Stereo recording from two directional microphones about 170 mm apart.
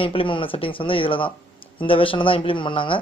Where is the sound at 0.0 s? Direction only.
30° left (ahead or behind).